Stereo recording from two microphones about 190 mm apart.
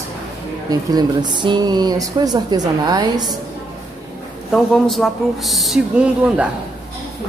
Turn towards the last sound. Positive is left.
turn(degrees=-5)  # may be behind; listen again after turning